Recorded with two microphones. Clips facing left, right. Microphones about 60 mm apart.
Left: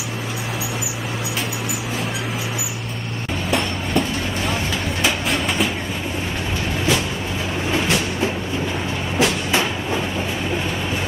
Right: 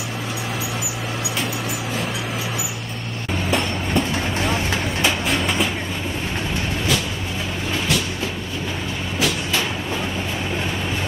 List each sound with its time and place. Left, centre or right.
3.4 s a sound: centre
5.0 s train: centre
9.2 s vehicle: left